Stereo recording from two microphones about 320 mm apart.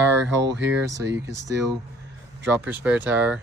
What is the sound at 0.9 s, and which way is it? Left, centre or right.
Speech, centre.